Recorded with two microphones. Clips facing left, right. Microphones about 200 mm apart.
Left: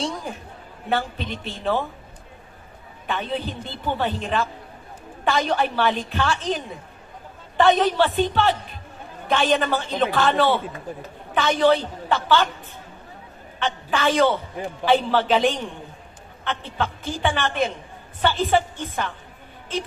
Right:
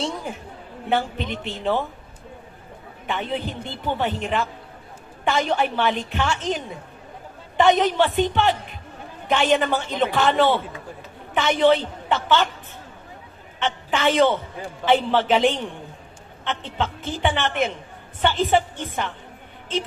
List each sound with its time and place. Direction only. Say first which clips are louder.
0.8 s a woman's voice: right 2 dB; 20° right (ahead or behind)
3.1 s a woman's voice: even; 20° right (ahead or behind)
13.8 s a man's voice: right 1 dB; 20° right (ahead or behind)